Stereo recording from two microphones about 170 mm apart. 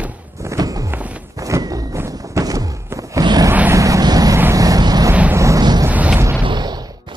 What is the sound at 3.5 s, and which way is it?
Vehicle, 15° right (ahead or behind).